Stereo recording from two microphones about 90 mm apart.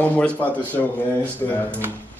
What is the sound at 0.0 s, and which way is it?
A man's voice, 15° left (ahead or behind).